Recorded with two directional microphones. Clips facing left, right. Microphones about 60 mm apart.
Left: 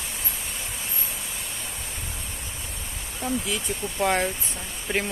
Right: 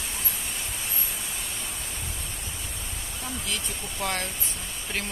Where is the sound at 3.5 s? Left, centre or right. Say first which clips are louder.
Left 4 dB; centre.